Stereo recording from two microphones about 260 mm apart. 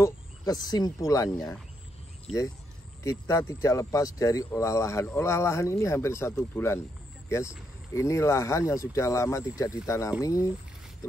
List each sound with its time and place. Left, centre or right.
0.0 s speech: centre
3.0 s speech: centre